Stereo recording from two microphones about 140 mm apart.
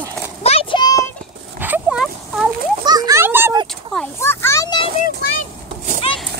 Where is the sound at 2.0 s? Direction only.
Centre (ahead or behind).